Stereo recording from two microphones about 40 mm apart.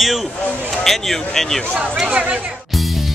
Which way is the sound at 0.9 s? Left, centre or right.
Centre.